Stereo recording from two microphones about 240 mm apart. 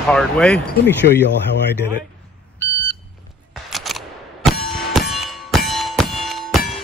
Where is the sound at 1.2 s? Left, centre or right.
Left.